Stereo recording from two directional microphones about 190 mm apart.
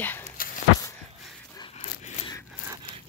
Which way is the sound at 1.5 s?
25° left (ahead or behind).